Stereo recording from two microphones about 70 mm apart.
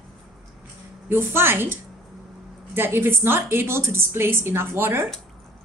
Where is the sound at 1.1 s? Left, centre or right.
Right.